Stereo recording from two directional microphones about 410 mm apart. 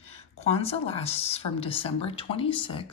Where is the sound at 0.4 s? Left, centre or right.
Centre.